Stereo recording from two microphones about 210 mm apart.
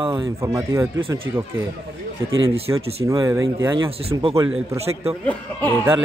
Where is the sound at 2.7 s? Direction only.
10° right (ahead or behind).